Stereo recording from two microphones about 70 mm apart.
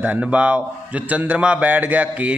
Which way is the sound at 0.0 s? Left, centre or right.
Centre.